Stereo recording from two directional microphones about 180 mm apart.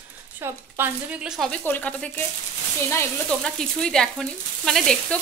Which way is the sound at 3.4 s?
5° left (ahead or behind).